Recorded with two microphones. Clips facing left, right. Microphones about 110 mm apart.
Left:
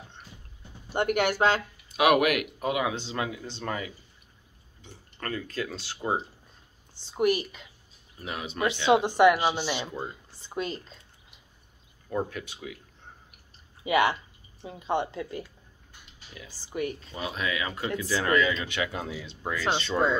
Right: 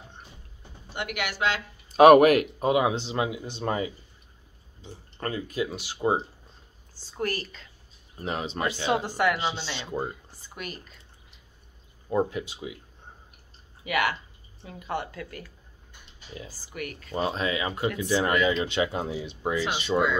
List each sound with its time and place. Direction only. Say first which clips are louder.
0.9 s speech: left 7 dB; 45° left (ahead or behind)
2.0 s speech: right 8 dB; 40° right (ahead or behind); by 6.2 s 20° right (ahead or behind)
6.9 s a woman's voice: left 6 dB; 20° left (ahead or behind)
8.2 s speech: right 3 dB; 35° right (ahead or behind)
8.6 s speech: left 5 dB; 20° left (ahead or behind)
12.1 s speech: right 5 dB; 20° right (ahead or behind)
13.8 s speech: left 3 dB; 25° left (ahead or behind)
16.5 s speech: left 8 dB; 25° left (ahead or behind)
17.1 s speech: right 4 dB; 35° right (ahead or behind); by 20.1 s 10° right (ahead or behind)